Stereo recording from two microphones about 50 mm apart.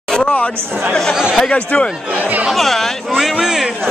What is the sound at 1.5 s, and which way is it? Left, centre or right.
Speech, left.